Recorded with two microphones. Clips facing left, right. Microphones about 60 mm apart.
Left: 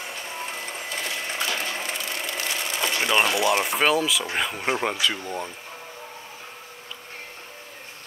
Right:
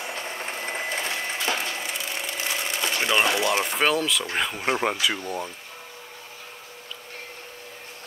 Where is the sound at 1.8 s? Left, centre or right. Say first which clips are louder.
Left 1 dB; centre.